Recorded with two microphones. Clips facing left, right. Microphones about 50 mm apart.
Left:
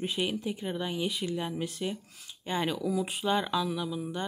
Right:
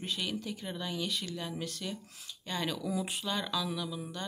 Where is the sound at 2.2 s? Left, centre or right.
Left.